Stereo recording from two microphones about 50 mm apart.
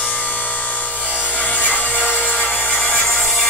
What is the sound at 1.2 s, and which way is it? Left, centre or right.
Wood, left.